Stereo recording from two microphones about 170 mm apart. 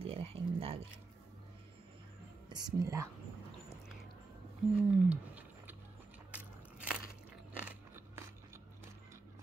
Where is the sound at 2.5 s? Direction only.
20° right (ahead or behind).